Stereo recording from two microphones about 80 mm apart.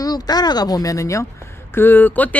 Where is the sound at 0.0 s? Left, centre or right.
Left.